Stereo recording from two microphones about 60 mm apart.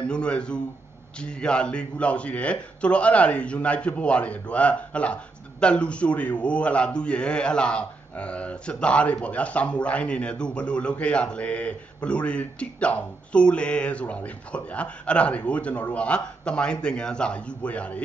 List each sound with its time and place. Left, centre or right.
0.1 s a man's voice: centre